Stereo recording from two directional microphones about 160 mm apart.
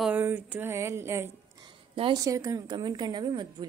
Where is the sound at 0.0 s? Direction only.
10° right (ahead or behind).